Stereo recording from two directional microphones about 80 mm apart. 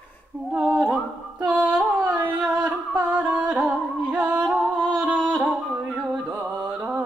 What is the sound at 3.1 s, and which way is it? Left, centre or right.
Music, centre.